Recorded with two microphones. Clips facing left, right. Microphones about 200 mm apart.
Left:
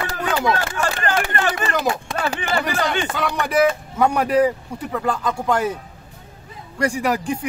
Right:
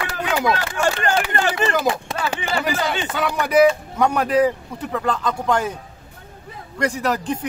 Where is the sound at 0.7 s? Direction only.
25° right (ahead or behind).